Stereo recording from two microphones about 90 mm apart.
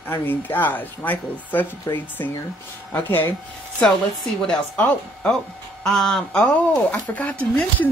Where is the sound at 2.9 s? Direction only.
20° left (ahead or behind).